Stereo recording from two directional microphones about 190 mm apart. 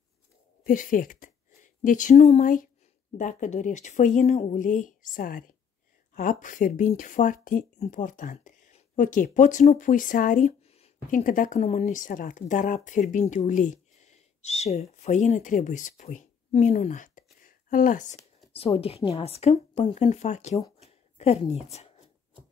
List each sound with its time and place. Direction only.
0.7 s speech: 45° left (ahead or behind)
18.5 s speech: 30° left (ahead or behind)
20.8 s a sound: 35° left (ahead or behind)